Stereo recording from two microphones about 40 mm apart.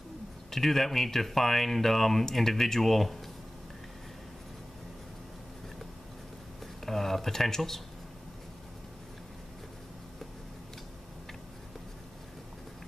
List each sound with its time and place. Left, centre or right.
0.5 s speech: centre
6.9 s speech: centre